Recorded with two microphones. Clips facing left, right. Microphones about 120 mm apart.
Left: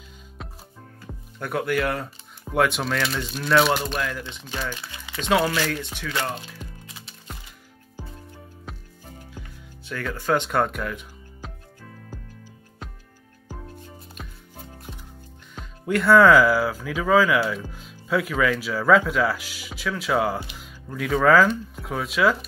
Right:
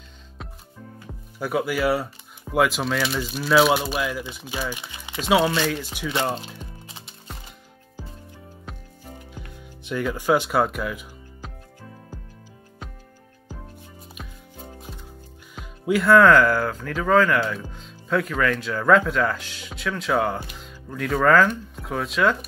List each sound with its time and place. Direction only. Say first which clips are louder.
0.4 s music: even; centre (ahead or behind)
1.0 s speech: right 3 dB; 5° right (ahead or behind); by 5.7 s 20° right (ahead or behind)
5.7 s speech: right 2 dB; 5° right (ahead or behind)
6.0 s music: right 4 dB; 25° right (ahead or behind)
8.7 s music: even; centre (ahead or behind)
9.8 s speech: right 3 dB; 15° right (ahead or behind)
14.2 s music: right 3 dB; 5° right (ahead or behind)
15.5 s speech: right 2 dB; 5° right (ahead or behind)